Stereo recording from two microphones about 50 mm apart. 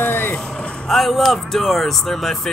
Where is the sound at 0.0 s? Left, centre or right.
Left.